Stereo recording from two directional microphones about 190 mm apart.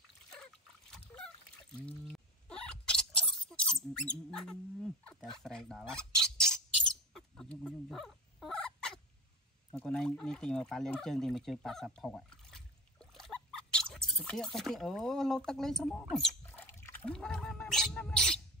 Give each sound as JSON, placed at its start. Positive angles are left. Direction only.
{"t": 0.3, "sound": "trickle", "side_deg": 5}
{"t": 1.8, "sound": "a sound", "side_deg": 5}
{"t": 6.3, "sound": "bird", "side_deg": 5}
{"t": 9.8, "sound": "speech", "side_deg": 5}